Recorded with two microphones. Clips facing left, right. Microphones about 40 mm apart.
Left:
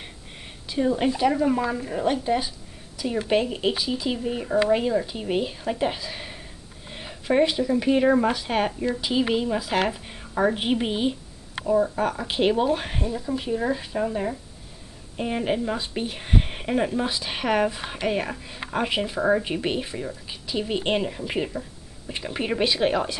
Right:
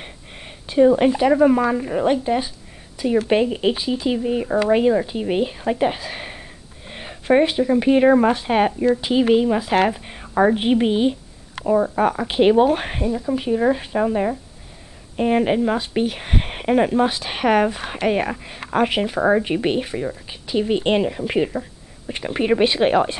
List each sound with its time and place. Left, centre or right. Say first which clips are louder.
0.7 s speech: right 8 dB; right
6.0 s a sound: right 4 dB; right
6.9 s speech: right 7 dB; centre
11.6 s speech: right 4 dB; right
13.0 s speech: right 6 dB; centre
13.5 s speech: right 8 dB; right
20.2 s speech: right 7 dB; centre